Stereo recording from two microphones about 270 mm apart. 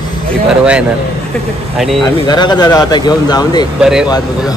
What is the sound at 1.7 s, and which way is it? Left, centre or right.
Speech, centre.